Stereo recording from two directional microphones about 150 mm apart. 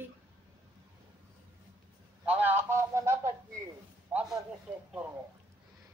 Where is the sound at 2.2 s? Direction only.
10° right (ahead or behind).